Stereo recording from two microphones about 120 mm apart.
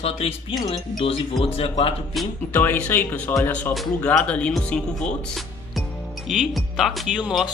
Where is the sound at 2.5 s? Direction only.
15° left (ahead or behind).